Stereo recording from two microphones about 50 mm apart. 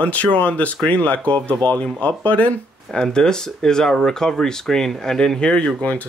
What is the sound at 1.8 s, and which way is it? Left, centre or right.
Speech, left.